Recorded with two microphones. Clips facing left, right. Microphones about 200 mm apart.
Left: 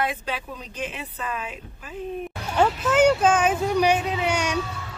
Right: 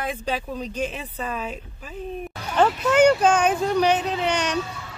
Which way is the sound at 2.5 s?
5° left (ahead or behind).